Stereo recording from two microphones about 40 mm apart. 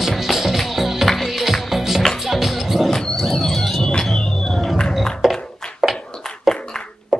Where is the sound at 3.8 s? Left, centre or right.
Centre.